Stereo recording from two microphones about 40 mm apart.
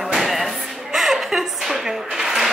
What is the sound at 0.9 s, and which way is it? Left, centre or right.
Zipper, centre.